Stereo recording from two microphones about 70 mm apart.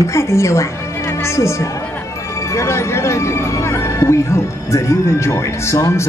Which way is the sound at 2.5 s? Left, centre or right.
Left.